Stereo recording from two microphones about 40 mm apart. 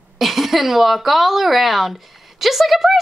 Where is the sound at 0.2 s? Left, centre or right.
Centre.